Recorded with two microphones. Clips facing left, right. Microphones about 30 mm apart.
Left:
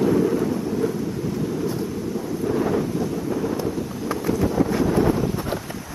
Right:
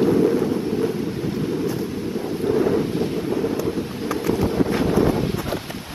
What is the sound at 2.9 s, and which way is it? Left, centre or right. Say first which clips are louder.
Wind noise: right 2 dB; right.